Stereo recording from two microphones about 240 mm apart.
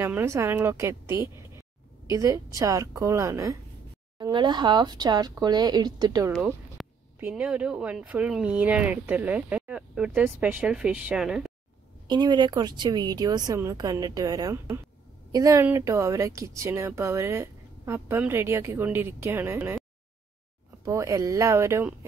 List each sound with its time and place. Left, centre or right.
0.0 s speech: centre
6.3 s speech: centre
12.1 s speech: centre
20.8 s speech: centre